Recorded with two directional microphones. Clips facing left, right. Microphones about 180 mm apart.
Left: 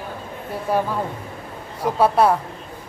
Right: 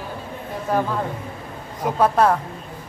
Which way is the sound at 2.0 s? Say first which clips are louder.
Left 1 dB; 10° left (ahead or behind).